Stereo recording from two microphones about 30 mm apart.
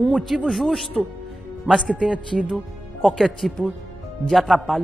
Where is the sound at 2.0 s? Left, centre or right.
Right.